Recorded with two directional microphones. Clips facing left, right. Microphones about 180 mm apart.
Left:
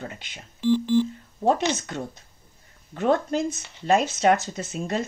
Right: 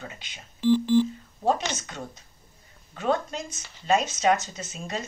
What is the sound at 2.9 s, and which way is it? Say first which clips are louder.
Speech: left 5 dB; 55° left (ahead or behind).